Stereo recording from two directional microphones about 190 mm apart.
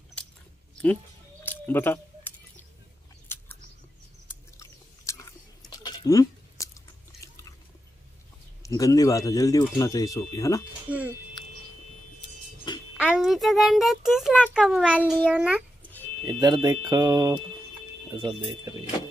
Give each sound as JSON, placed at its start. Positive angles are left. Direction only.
{"t": 0.2, "sound": "a sound", "side_deg": 5}
{"t": 1.4, "sound": "a sound", "side_deg": 10}
{"t": 4.3, "sound": "chewing", "side_deg": 15}
{"t": 8.6, "sound": "speech", "side_deg": 20}
{"t": 10.9, "sound": "speech", "side_deg": -10}
{"t": 12.9, "sound": "a child's voice", "side_deg": -5}
{"t": 16.3, "sound": "speech", "side_deg": -20}